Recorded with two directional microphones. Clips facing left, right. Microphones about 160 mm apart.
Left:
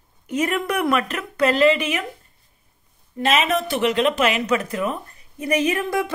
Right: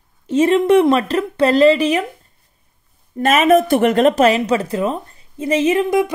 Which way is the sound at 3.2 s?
50° right (ahead or behind).